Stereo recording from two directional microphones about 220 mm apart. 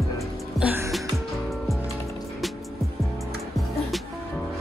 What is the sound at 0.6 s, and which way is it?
Music, 10° right (ahead or behind).